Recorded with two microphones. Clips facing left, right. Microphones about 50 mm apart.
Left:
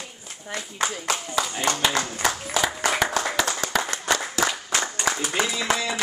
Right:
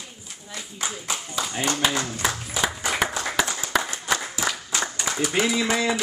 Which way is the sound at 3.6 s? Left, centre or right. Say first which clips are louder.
Left 1 dB; left.